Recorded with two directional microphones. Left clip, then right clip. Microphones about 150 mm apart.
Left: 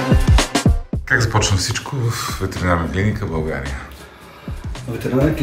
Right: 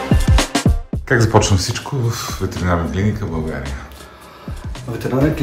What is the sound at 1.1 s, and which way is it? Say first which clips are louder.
Speech: right 3 dB; 55° right (ahead or behind).